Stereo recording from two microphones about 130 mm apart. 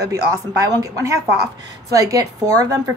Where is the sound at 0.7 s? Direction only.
25° right (ahead or behind).